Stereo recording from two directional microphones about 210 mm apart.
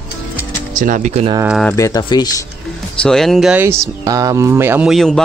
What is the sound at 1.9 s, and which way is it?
Speech, 20° left (ahead or behind).